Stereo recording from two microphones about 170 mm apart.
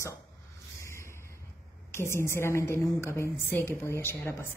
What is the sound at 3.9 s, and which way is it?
Speech, 15° left (ahead or behind).